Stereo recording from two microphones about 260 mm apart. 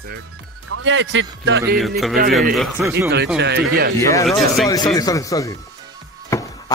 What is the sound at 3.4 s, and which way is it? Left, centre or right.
Speech, right.